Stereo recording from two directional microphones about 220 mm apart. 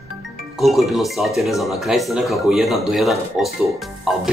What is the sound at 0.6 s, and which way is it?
Speech, centre (ahead or behind).